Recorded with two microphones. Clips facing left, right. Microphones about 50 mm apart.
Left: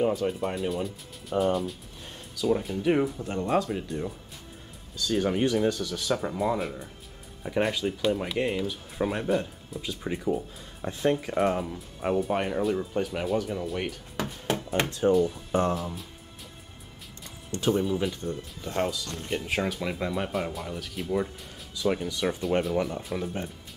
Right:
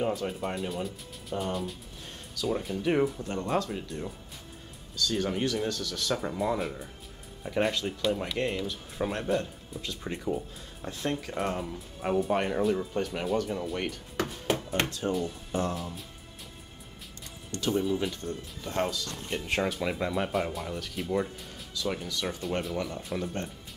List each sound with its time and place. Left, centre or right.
0.0 s speech: centre
10.8 s speech: centre
15.7 s speech: centre
17.5 s speech: left
17.8 s speech: centre
21.8 s speech: centre
23.0 s speech: centre